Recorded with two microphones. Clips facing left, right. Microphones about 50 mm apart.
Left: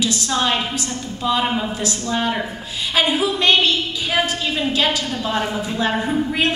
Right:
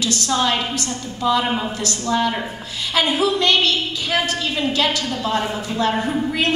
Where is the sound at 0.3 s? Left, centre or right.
Centre.